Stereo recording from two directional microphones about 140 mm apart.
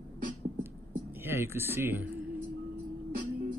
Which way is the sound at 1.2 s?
15° right (ahead or behind).